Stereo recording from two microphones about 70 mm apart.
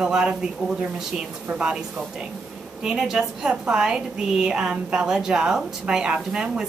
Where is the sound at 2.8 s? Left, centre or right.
Centre.